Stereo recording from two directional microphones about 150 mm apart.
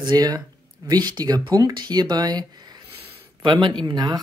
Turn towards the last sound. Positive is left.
turn(degrees=-25)  # may be behind; listen again after turning